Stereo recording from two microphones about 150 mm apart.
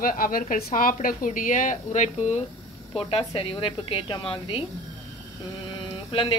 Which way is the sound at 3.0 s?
40° left (ahead or behind).